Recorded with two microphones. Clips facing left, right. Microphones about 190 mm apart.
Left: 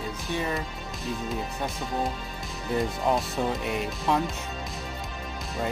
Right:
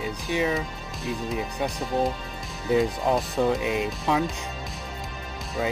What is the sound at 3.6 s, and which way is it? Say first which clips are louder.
Speech: right 3 dB; 75° right (ahead or behind).